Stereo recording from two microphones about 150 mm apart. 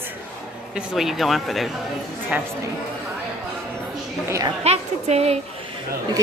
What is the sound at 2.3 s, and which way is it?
Speech, 10° right (ahead or behind).